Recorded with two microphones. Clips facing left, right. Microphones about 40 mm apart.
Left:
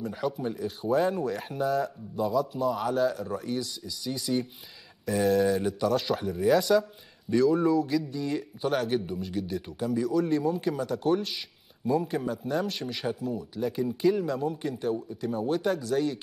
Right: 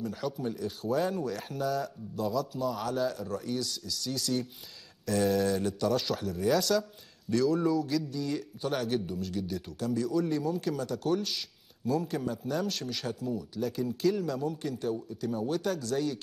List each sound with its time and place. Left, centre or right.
0.0 s a man's voice: centre
3.0 s a man's voice: centre